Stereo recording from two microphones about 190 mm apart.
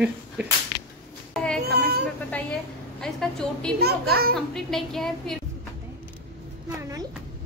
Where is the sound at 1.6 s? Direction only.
55° right (ahead or behind).